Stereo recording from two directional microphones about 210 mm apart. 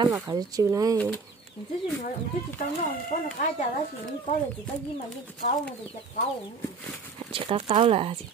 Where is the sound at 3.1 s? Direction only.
40° left (ahead or behind).